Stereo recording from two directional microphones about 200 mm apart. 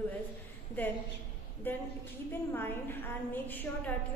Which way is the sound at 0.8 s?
10° left (ahead or behind).